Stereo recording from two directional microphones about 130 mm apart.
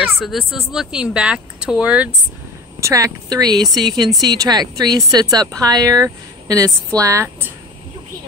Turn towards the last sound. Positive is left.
turn(degrees=-20)  # may be behind; listen again after turning